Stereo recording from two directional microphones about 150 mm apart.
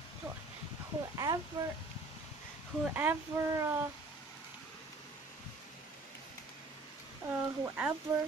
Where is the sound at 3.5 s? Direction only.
20° right (ahead or behind).